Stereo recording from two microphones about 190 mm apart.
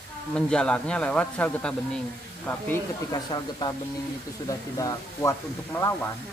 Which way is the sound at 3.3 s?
25° left (ahead or behind).